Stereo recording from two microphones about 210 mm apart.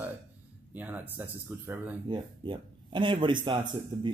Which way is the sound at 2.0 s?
20° right (ahead or behind).